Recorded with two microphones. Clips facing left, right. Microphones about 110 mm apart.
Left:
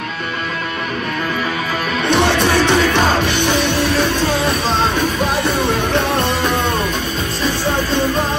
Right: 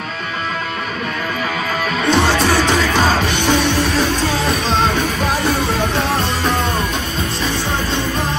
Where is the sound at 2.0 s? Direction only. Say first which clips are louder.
Even; 60° left (ahead or behind).